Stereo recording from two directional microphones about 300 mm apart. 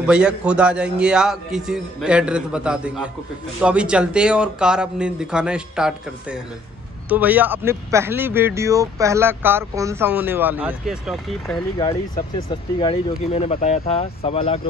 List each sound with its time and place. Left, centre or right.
0.0 s a man's voice: centre
11.4 s speech: centre